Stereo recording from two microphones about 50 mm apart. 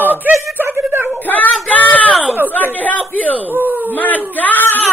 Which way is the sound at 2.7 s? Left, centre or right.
Left.